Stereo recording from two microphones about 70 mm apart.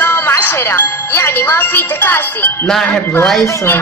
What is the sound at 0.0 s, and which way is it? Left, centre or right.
Speech, left.